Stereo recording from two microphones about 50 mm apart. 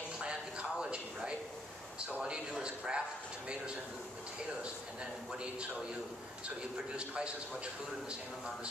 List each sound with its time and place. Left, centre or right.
0.2 s a sound: centre
2.0 s speech: centre
5.3 s a man's voice: centre
7.0 s speech: right